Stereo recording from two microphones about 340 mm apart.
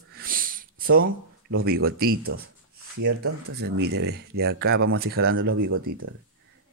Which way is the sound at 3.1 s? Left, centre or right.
Right.